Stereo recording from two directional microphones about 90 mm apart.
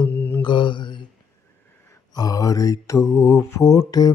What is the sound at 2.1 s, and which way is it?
Mantra, 40° left (ahead or behind).